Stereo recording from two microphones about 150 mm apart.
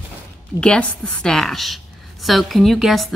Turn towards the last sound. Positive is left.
turn(degrees=0)  # may be behind; listen again after turning